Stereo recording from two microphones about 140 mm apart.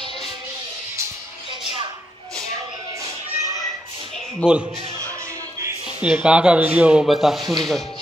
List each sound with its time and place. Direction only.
4.4 s a man's voice: 10° left (ahead or behind)
5.9 s speech: 10° right (ahead or behind)